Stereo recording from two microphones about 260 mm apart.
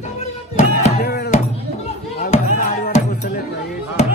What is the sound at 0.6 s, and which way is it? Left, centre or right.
Music, left.